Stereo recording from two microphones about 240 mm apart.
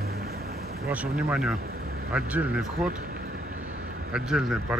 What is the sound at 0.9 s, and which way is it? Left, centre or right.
Speech, centre.